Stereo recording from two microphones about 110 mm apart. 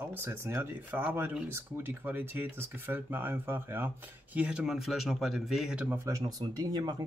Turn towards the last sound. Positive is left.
turn(degrees=-40)  # may be behind; listen again after turning